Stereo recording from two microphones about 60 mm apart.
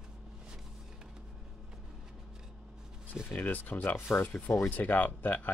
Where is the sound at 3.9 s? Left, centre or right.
Left.